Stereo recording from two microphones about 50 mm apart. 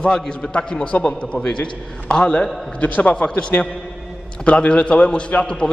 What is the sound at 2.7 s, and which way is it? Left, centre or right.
Speech, left.